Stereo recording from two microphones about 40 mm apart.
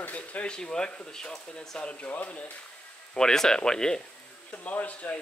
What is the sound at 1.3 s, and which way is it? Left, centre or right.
Speech, centre.